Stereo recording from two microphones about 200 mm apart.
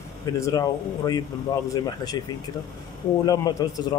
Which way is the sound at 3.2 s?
20° left (ahead or behind).